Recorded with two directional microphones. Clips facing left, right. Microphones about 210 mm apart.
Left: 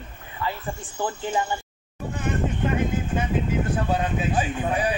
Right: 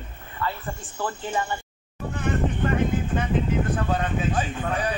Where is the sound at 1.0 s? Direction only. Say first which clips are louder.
Left 2 dB; 20° left (ahead or behind).